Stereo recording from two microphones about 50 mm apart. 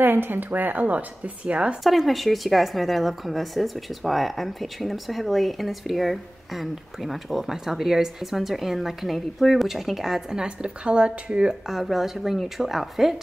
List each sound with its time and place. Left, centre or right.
0.0 s a woman's voice: right
1.8 s speech: centre